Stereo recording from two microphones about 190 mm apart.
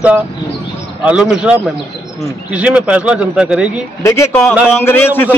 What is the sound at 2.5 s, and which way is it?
A man's voice, 5° right (ahead or behind).